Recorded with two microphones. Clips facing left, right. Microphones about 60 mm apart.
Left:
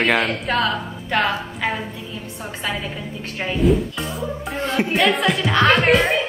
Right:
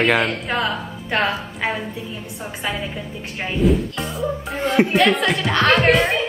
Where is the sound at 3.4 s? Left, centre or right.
Centre.